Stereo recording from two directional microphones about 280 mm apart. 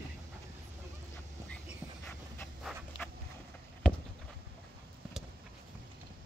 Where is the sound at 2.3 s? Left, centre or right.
Centre.